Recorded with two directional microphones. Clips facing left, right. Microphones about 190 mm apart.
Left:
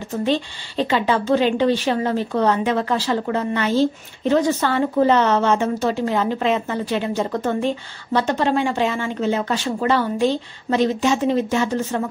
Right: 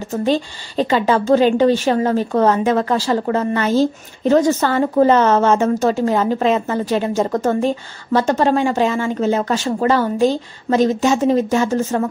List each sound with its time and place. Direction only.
0.1 s a woman's voice: 40° right (ahead or behind)